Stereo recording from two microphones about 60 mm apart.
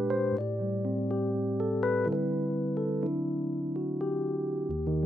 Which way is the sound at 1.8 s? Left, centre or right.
Centre.